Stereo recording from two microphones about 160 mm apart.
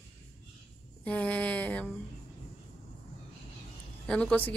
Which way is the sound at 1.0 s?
10° left (ahead or behind).